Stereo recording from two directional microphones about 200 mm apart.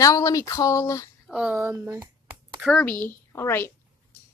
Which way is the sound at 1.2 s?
5° right (ahead or behind).